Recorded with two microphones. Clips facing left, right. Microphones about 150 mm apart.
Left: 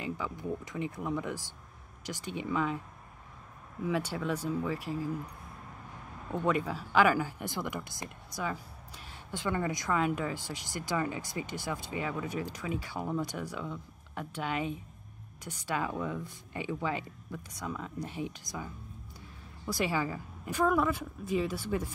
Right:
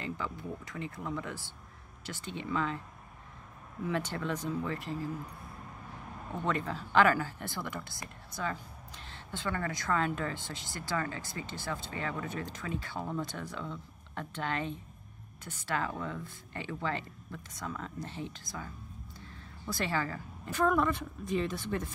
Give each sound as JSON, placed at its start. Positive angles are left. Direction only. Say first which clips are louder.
{"t": 0.0, "sound": "speech", "louder": "left 2 dB", "side_deg": 15}
{"t": 3.8, "sound": "speech", "louder": "left 2 dB", "side_deg": 5}
{"t": 6.4, "sound": "speech", "louder": "left 3 dB", "side_deg": 10}